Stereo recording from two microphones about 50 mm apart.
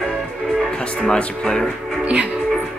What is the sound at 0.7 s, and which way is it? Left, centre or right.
Speech, centre.